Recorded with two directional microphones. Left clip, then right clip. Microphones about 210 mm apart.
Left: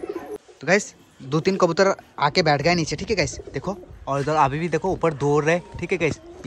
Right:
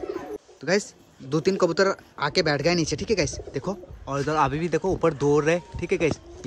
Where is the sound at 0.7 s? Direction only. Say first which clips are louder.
Left 4 dB; 10° right (ahead or behind).